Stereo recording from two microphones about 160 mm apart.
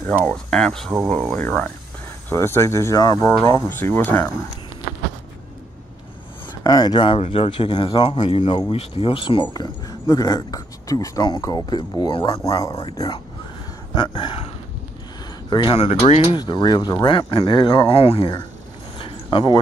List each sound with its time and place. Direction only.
0.2 s speech: 5° left (ahead or behind)
6.6 s speech: 25° left (ahead or behind)
15.5 s speech: 30° left (ahead or behind)
16.3 s speech: 25° left (ahead or behind)
18.9 s a sound: 30° left (ahead or behind)